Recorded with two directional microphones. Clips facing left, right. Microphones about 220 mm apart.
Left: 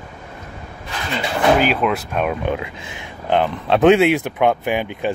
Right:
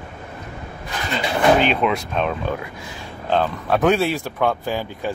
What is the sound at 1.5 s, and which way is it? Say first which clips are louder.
Speech: left 1 dB; 5° left (ahead or behind).